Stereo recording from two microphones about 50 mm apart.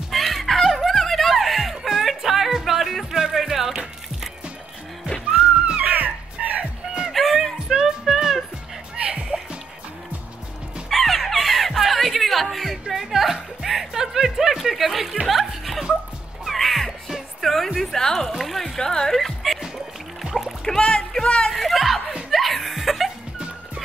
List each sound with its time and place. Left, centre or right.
0.1 s music: centre
5.8 s dog: right
7.1 s music: centre
7.6 s music: centre
8.9 s music: right
10.9 s a sound: centre
12.8 s music: centre
15.2 s chuckle: centre
16.4 s music: centre
17.7 s a sound: centre
18.8 s music: centre
20.6 s a sound: centre
21.5 s a sound: centre
22.3 s laughter: centre